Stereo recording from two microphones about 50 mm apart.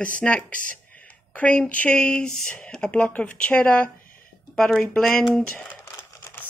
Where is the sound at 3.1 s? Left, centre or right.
Left.